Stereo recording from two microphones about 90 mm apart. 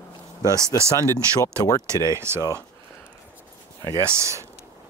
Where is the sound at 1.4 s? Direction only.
45° left (ahead or behind).